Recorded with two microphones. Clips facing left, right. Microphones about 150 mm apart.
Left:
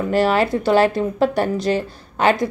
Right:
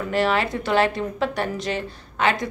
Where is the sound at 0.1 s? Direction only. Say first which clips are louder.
Left 4 dB; 40° left (ahead or behind).